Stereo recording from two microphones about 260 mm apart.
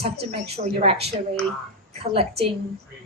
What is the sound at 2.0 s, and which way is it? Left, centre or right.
Speech, right.